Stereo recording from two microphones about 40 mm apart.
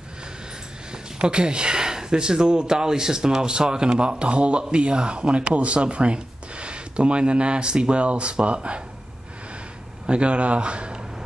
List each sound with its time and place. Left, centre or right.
0.9 s speech: right
10.0 s speech: right